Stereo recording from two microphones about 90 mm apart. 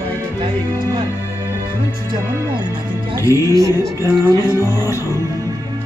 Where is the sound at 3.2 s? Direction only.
30° right (ahead or behind).